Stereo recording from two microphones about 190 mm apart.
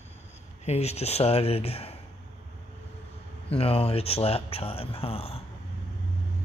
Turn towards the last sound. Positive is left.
turn(degrees=30)  # may be behind; listen again after turning